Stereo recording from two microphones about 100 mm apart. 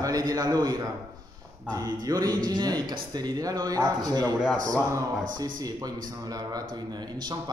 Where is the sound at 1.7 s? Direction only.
35° right (ahead or behind).